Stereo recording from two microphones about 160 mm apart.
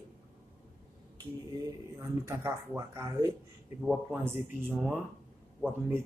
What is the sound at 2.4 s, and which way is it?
Speech, 15° right (ahead or behind).